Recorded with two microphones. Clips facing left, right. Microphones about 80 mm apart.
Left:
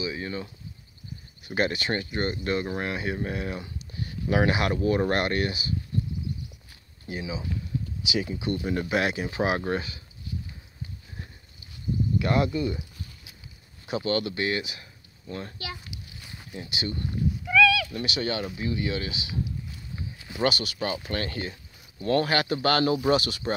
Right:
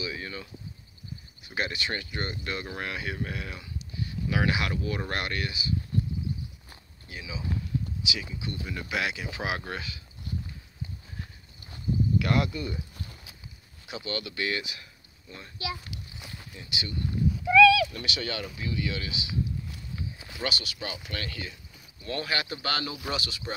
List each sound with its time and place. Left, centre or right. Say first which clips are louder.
0.0 s a sound: left 4 dB; left
1.5 s speech: left 5 dB; left
7.1 s speech: left 4 dB; left
12.2 s speech: left 3 dB; left
13.8 s speech: left 8 dB; left
15.2 s speech: left 1 dB; left
17.9 s speech: left 5 dB; left
20.3 s speech: left 8 dB; left